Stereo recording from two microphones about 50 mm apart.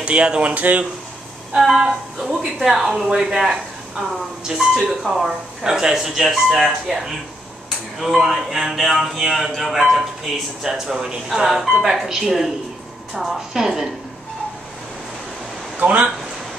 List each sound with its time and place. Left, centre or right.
0.0 s speech: centre
0.5 s speech: right
1.6 s speech: centre
5.6 s speech: centre
13.5 s speech: centre
15.8 s speech: right